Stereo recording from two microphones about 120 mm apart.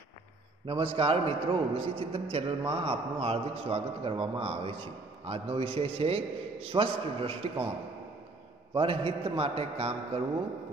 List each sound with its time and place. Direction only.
0.7 s a man's voice: 50° right (ahead or behind)
8.7 s a man's voice: 50° right (ahead or behind)